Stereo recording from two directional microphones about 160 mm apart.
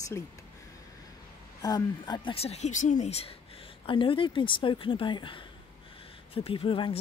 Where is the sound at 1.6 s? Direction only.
25° left (ahead or behind).